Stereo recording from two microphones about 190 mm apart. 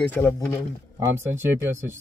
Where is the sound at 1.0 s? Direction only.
15° right (ahead or behind).